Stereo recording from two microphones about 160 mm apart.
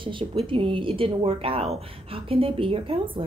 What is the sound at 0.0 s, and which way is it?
Speech, 30° right (ahead or behind).